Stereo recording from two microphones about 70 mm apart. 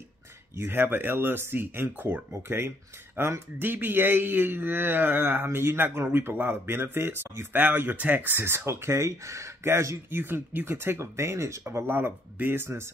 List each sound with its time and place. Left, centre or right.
0.6 s speech: right
11.6 s speech: right